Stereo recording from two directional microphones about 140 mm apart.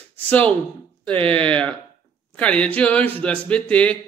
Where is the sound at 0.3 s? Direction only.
10° left (ahead or behind).